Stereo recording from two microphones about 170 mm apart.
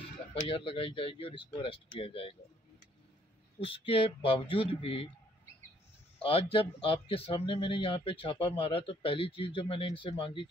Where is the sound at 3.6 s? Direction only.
35° left (ahead or behind).